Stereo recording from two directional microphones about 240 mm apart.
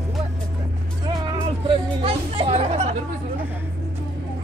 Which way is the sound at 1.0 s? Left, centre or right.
Centre.